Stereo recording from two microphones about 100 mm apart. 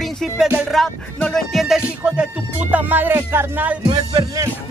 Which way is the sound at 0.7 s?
Centre (ahead or behind).